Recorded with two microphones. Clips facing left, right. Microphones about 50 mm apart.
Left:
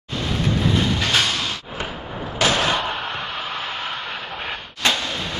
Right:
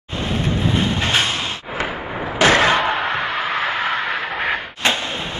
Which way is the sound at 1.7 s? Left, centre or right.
Right.